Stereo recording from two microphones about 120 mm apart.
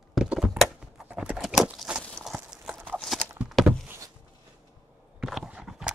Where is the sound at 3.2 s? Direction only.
10° right (ahead or behind).